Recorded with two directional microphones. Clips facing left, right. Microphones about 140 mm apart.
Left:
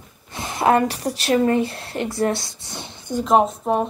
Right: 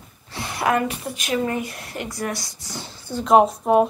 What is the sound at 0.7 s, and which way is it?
A woman's voice, 35° left (ahead or behind).